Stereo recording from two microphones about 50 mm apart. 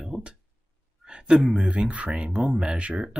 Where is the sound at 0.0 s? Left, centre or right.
Centre.